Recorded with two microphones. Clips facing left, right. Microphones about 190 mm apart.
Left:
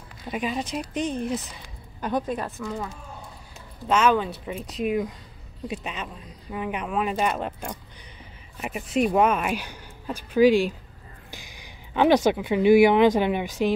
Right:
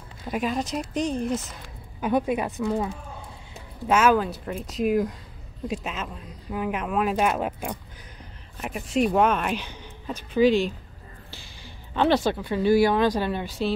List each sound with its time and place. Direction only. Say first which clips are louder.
0.3 s a woman's voice: right 2 dB; centre (ahead or behind)
3.8 s a woman's voice: right 1 dB; 5° right (ahead or behind); by 13.7 s 15° left (ahead or behind)